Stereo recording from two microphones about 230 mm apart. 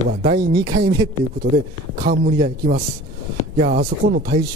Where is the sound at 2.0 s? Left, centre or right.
Right.